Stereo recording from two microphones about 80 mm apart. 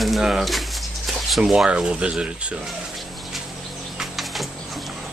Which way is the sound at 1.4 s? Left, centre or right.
Centre.